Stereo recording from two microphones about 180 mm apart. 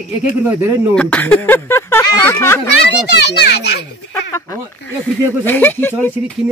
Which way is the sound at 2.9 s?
70° left (ahead or behind).